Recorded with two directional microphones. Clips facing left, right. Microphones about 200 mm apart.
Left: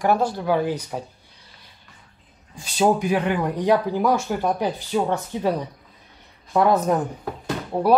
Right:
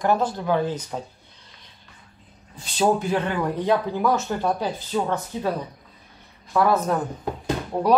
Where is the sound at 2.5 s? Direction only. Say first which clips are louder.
Left 1 dB; 10° left (ahead or behind).